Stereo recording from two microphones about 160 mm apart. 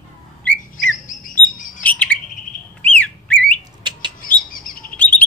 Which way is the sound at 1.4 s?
55° left (ahead or behind).